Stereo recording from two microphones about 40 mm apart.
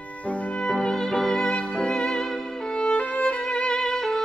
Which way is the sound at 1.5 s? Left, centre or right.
Left.